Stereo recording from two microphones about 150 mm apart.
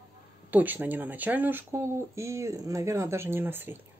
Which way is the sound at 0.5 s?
10° right (ahead or behind).